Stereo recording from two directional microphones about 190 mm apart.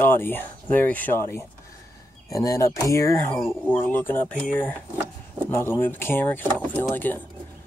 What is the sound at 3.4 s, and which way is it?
Speech, centre (ahead or behind).